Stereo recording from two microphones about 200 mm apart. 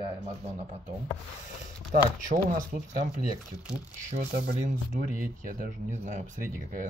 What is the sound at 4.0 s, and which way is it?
Speech, 40° right (ahead or behind).